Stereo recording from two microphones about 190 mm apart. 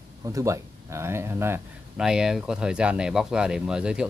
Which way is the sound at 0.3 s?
15° right (ahead or behind).